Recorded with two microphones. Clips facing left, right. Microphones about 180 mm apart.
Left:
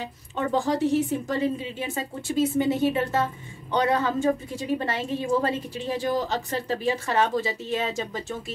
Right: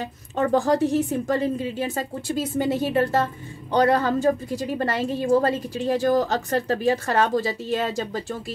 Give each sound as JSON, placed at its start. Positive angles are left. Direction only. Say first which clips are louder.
{"t": 0.0, "sound": "a woman's voice", "louder": "right 5 dB", "side_deg": -45}